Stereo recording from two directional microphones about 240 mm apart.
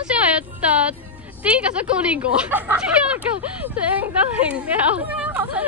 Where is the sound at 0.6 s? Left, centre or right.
Centre.